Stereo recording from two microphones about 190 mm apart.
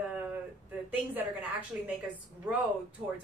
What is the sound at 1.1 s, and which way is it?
Speech, 10° right (ahead or behind).